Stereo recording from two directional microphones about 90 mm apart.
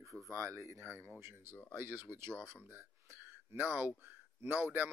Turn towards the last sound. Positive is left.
turn(degrees=-25)  # may be behind; listen again after turning